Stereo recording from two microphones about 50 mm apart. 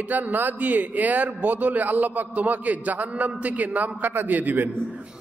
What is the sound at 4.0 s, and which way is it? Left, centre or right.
Speech, right.